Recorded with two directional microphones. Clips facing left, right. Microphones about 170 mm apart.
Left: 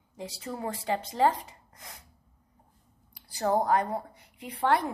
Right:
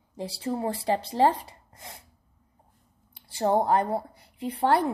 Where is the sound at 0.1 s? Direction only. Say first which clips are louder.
Right 7 dB; 35° right (ahead or behind).